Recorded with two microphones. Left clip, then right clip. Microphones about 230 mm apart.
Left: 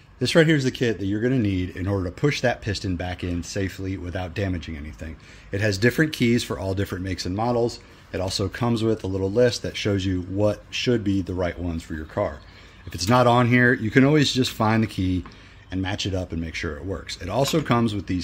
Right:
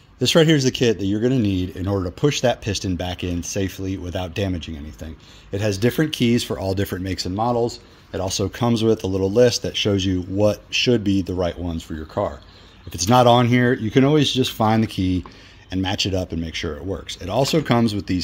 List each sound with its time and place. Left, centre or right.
0.2 s speech: right